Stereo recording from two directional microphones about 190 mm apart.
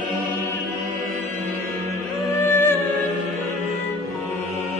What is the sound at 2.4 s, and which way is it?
Music, 15° left (ahead or behind).